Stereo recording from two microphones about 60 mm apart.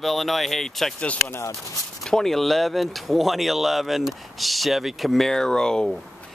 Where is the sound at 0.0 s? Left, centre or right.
Centre.